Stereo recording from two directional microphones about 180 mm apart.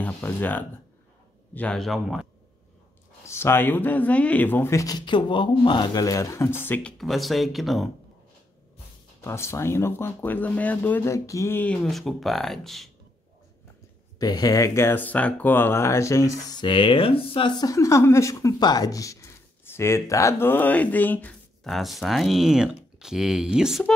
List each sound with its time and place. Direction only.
0.0 s speech: 10° left (ahead or behind)
3.3 s speech: 15° left (ahead or behind)
9.2 s speech: 15° left (ahead or behind)
14.1 s speech: 20° left (ahead or behind); by 23.9 s 5° right (ahead or behind)